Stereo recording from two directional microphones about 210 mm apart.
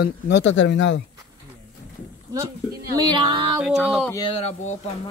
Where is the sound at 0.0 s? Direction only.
55° left (ahead or behind).